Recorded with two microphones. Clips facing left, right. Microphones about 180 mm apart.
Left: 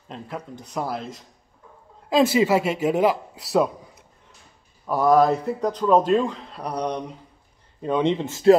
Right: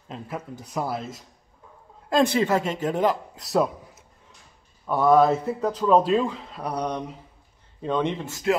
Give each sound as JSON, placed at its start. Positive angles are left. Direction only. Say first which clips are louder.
{"t": 0.1, "sound": "speech", "louder": "even", "side_deg": -5}
{"t": 7.8, "sound": "speech", "louder": "left 4 dB", "side_deg": 15}